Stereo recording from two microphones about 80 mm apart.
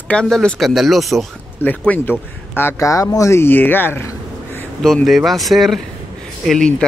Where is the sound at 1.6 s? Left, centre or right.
Left.